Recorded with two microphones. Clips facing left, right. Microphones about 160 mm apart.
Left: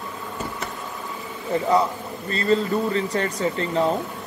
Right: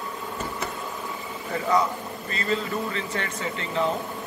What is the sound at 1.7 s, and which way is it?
A man's voice, 35° left (ahead or behind).